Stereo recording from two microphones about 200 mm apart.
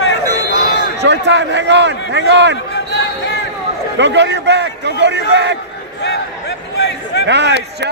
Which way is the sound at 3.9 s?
60° right (ahead or behind).